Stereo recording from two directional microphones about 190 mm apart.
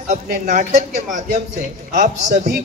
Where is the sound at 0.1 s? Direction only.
40° right (ahead or behind).